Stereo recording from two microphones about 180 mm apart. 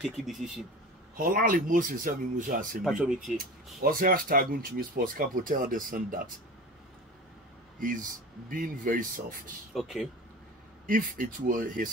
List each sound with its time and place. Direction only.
0.0 s a man's voice: centre (ahead or behind)
1.1 s speech: 50° right (ahead or behind)
2.8 s a man's voice: 5° right (ahead or behind)
3.3 s speech: 55° right (ahead or behind)
7.8 s speech: 50° right (ahead or behind)
9.8 s a man's voice: centre (ahead or behind)
10.9 s speech: 50° right (ahead or behind)